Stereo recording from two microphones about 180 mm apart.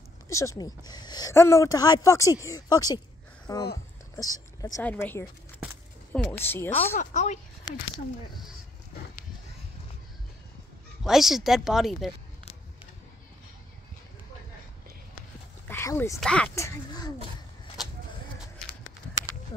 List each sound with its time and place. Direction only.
0.3 s speech: 15° left (ahead or behind)
7.0 s speech: 40° left (ahead or behind)
11.1 s speech: centre (ahead or behind)
15.7 s speech: 15° left (ahead or behind)
16.2 s speech: 5° left (ahead or behind)
16.5 s speech: 20° left (ahead or behind)